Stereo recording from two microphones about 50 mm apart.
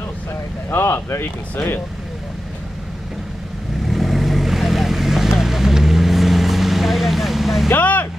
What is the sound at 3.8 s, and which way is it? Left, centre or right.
Vehicle, centre.